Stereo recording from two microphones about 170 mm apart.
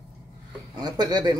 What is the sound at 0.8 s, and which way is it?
Speech, 25° right (ahead or behind).